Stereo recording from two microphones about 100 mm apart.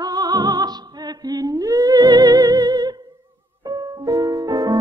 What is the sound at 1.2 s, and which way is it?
Humming, 40° right (ahead or behind).